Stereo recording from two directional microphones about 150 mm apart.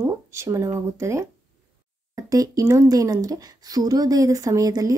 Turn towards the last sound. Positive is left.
turn(degrees=-25)  # may be behind; listen again after turning